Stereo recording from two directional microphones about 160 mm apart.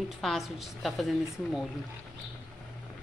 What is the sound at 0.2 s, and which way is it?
Speech, centre (ahead or behind).